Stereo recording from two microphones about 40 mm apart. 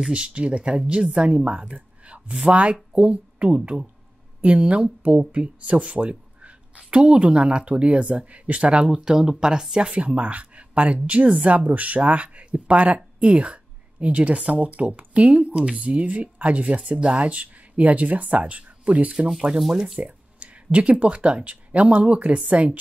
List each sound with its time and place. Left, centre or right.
0.1 s speech: right
19.7 s speech: centre
20.0 s speech: right